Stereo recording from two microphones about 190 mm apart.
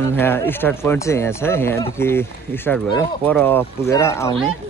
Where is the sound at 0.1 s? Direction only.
10° left (ahead or behind).